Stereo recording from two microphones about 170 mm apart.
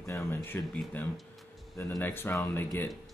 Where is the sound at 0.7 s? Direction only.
Centre (ahead or behind).